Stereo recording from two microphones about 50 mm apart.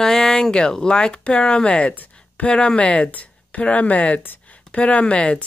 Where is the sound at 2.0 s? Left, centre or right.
Left.